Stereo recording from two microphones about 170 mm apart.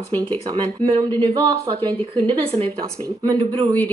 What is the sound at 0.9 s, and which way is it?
Speech, 30° right (ahead or behind).